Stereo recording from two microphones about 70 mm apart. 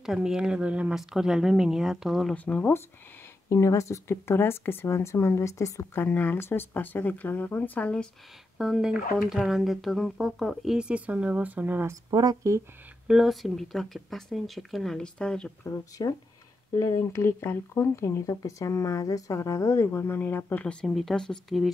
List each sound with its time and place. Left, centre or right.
0.0 s speech: centre
0.9 s speech: centre
2.3 s speech: centre
3.4 s speech: left
5.9 s speech: left
8.5 s speech: centre; by 11.8 s right
12.1 s speech: right
13.0 s speech: centre
15.6 s speech: left
20.8 s speech: centre